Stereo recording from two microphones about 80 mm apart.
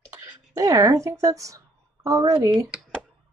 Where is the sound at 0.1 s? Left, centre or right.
Right.